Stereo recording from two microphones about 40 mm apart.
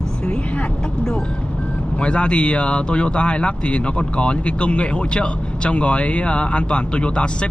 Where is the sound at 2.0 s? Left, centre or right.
Left.